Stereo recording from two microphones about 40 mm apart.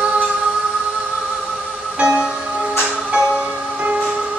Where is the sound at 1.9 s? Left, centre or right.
Right.